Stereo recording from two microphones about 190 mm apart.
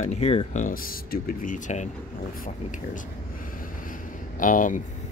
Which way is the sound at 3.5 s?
45° left (ahead or behind).